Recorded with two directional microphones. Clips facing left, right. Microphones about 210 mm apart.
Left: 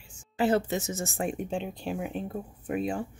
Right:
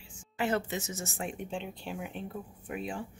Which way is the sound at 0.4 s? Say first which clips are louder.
Left 6 dB; 35° left (ahead or behind).